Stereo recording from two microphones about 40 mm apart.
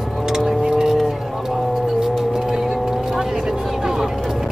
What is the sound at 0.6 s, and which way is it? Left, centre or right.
Vehicle, centre.